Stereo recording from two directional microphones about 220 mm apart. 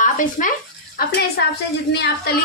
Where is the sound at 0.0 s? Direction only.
35° left (ahead or behind).